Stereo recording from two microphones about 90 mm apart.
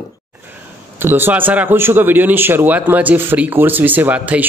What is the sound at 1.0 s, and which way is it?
A man's voice, 25° right (ahead or behind).